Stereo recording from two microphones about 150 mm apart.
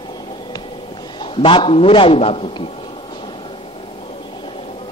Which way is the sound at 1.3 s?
35° left (ahead or behind).